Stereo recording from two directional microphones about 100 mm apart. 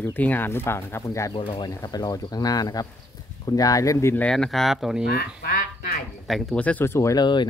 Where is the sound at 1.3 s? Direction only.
60° left (ahead or behind).